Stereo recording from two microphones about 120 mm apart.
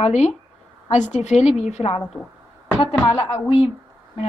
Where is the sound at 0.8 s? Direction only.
80° left; by 2.0 s 65° left (ahead or behind).